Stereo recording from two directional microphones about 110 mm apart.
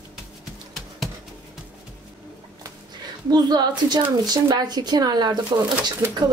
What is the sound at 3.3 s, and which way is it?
Speech, 40° right (ahead or behind).